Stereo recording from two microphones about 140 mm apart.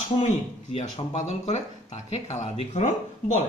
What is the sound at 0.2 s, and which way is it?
Speech, 50° left (ahead or behind).